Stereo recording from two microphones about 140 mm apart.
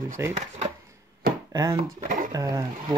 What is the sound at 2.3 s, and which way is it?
Speech, 25° right (ahead or behind).